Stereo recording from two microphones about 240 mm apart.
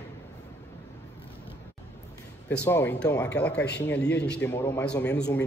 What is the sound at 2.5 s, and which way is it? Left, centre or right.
A man's voice, centre.